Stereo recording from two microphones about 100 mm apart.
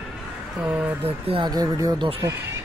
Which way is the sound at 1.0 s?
65° right (ahead or behind).